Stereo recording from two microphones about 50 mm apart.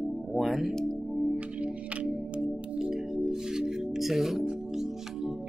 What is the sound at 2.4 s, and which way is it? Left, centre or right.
Music, centre.